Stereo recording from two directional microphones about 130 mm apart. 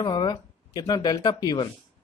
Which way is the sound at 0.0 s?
30° left (ahead or behind).